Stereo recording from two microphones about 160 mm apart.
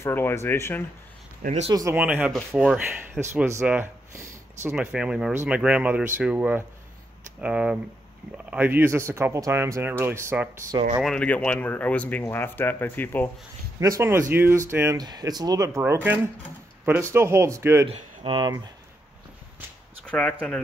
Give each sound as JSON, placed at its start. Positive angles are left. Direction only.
{"t": 0.0, "sound": "speech", "side_deg": 15}
{"t": 1.4, "sound": "speech", "side_deg": -50}
{"t": 1.7, "sound": "speech", "side_deg": -20}
{"t": 2.0, "sound": "speech", "side_deg": -10}
{"t": 11.0, "sound": "speech", "side_deg": 5}
{"t": 13.7, "sound": "speech", "side_deg": -20}
{"t": 17.8, "sound": "speech", "side_deg": -35}
{"t": 20.1, "sound": "speech", "side_deg": 5}